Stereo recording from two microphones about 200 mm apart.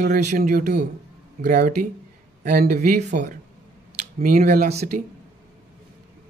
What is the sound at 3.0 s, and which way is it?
Speech, 35° right (ahead or behind).